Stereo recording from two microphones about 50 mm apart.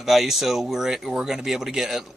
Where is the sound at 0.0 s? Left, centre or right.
Centre.